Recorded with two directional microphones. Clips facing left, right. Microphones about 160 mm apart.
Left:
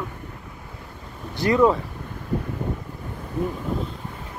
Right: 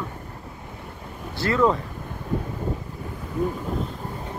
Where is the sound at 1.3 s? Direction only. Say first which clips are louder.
Left 3 dB; 15° left (ahead or behind).